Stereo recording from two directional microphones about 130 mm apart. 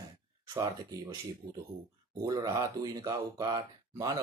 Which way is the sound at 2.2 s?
30° right (ahead or behind).